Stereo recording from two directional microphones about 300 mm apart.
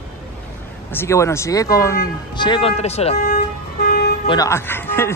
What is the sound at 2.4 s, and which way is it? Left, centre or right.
Vehicle, centre.